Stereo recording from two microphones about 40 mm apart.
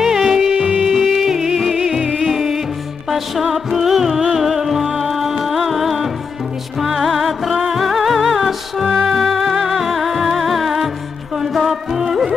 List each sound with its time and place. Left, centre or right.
0.0 s music: centre
0.6 s music: right
0.8 s music: centre